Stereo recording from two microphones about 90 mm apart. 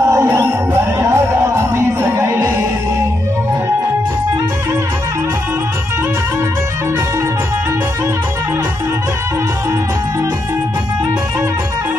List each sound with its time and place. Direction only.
0.0 s music: 30° right (ahead or behind)